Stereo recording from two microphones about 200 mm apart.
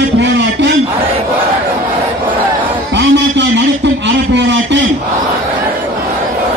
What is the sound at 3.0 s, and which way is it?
Music, 60° right (ahead or behind).